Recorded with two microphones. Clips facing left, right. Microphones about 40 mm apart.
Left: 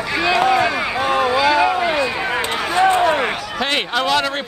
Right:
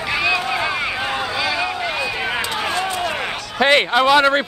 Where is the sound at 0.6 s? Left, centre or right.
Centre.